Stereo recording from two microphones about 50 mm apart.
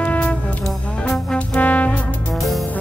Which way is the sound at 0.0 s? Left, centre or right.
Left.